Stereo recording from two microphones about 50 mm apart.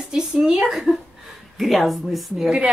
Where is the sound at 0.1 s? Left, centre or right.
Centre.